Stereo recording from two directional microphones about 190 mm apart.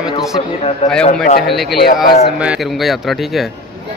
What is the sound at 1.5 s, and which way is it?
A man's voice, centre (ahead or behind).